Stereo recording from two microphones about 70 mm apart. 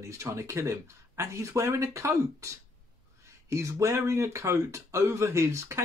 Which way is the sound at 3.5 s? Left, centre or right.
Right.